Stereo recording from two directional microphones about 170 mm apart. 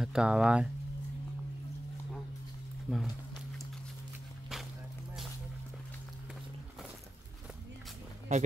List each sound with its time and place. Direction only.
0.0 s speech: 5° right (ahead or behind)
2.9 s speech: 5° left (ahead or behind)
8.3 s speech: 40° right (ahead or behind)